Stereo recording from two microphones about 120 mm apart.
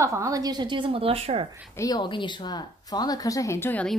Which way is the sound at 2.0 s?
40° left (ahead or behind).